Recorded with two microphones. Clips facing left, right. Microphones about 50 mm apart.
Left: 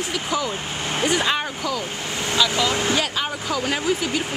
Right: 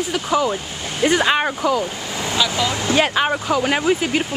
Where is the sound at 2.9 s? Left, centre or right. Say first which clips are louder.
Right 6 dB; right.